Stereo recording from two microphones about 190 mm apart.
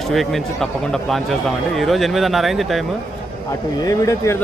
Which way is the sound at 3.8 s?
15° left (ahead or behind).